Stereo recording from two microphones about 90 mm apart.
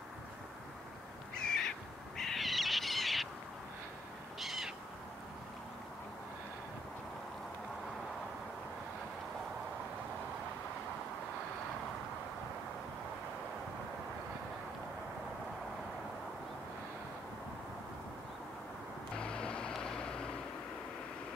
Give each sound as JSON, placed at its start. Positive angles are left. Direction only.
{"t": 1.3, "sound": "crow", "side_deg": 10}
{"t": 2.1, "sound": "owl", "side_deg": 5}
{"t": 4.4, "sound": "owl", "side_deg": 0}
{"t": 19.1, "sound": "vehicle", "side_deg": 10}